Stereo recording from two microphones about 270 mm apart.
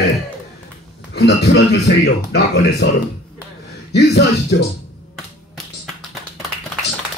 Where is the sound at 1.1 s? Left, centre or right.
Left.